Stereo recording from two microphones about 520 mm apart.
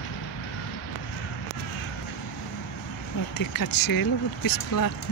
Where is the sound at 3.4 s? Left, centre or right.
Left.